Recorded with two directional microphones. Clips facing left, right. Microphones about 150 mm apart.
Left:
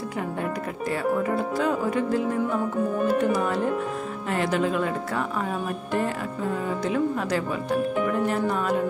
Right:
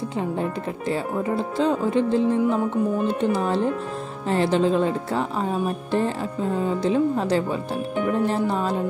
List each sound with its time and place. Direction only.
0.4 s speech: 25° right (ahead or behind)